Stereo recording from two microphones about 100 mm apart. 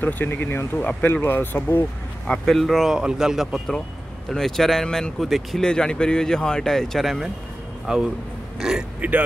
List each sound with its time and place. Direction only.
0.0 s speech: 20° left (ahead or behind)
2.2 s speech: 5° left (ahead or behind); by 9.2 s 10° right (ahead or behind)